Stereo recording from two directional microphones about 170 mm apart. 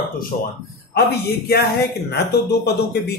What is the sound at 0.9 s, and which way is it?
Speech, 70° left (ahead or behind).